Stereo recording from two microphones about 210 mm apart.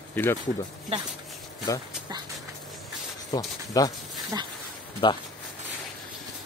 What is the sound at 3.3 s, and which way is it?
Speech, 20° left (ahead or behind).